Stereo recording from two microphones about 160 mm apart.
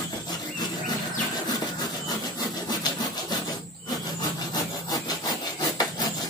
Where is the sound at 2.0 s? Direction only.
25° left (ahead or behind).